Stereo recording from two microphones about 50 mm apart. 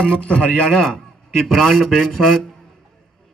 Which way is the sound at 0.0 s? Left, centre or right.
Left.